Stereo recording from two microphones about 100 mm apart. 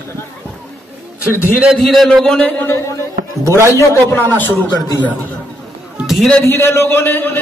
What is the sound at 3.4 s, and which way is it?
Speech, 30° right (ahead or behind).